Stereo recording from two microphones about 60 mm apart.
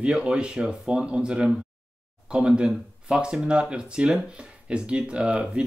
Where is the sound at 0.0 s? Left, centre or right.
Centre.